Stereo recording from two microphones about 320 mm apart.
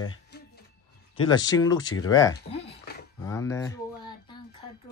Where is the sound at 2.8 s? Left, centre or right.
Left.